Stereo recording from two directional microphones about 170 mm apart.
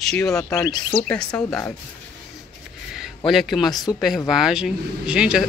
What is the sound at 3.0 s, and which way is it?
Speech, centre (ahead or behind).